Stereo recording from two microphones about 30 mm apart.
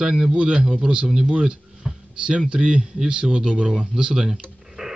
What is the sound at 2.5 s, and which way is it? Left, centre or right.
Speech, right.